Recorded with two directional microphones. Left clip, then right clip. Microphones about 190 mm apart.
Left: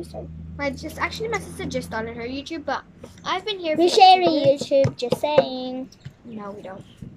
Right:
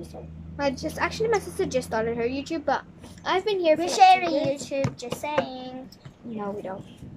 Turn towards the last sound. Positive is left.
turn(degrees=-5)  # may be behind; listen again after turning